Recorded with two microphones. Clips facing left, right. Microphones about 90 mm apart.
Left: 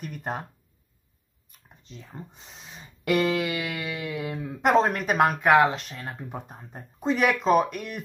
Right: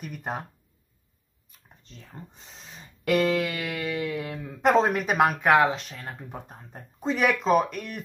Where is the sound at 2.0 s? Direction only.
10° left (ahead or behind).